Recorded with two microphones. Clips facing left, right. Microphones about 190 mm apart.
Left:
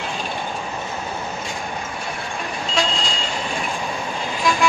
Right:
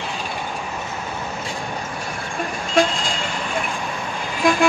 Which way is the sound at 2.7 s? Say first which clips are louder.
Right 5 dB; 50° right (ahead or behind).